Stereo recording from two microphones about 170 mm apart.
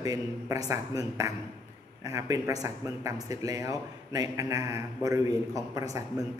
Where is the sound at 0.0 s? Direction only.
20° right (ahead or behind).